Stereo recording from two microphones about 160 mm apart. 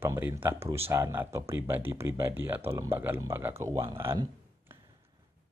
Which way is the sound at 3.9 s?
15° right (ahead or behind).